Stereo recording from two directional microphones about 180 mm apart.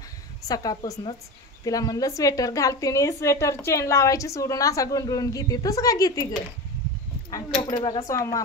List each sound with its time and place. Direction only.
0.5 s a woman's voice: 20° left (ahead or behind)
7.2 s a woman's voice: 20° left (ahead or behind)